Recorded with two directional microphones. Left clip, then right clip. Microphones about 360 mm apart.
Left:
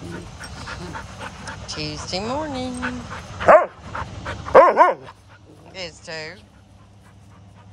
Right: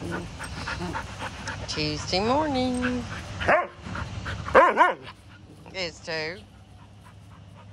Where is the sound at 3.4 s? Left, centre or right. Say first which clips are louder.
Left 10 dB; centre.